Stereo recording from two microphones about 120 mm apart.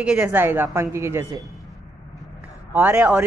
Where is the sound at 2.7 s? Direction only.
15° right (ahead or behind).